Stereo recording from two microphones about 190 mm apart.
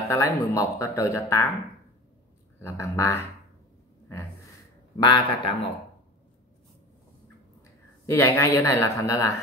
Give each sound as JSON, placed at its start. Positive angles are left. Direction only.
{"t": 0.1, "sound": "speech", "side_deg": 15}
{"t": 2.6, "sound": "speech", "side_deg": 15}
{"t": 4.9, "sound": "a man's voice", "side_deg": 25}
{"t": 8.1, "sound": "speech", "side_deg": 15}